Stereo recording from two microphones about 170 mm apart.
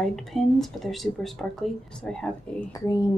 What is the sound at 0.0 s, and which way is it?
A woman's voice, centre (ahead or behind).